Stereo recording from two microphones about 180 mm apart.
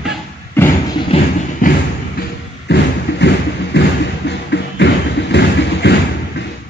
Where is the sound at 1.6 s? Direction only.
50° left (ahead or behind).